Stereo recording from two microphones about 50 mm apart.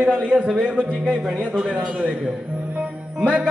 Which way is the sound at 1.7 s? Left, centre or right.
Centre.